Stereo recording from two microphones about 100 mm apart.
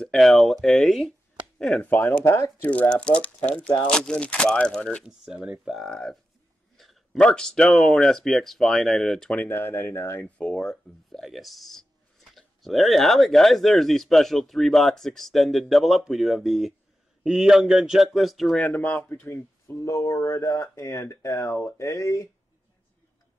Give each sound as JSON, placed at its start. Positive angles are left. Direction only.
{"t": 0.0, "sound": "speech", "side_deg": 0}
{"t": 1.8, "sound": "speech", "side_deg": 20}
{"t": 2.6, "sound": "speech", "side_deg": 15}
{"t": 5.0, "sound": "speech", "side_deg": -10}
{"t": 7.2, "sound": "speech", "side_deg": 10}
{"t": 10.3, "sound": "speech", "side_deg": 10}
{"t": 18.8, "sound": "speech", "side_deg": 20}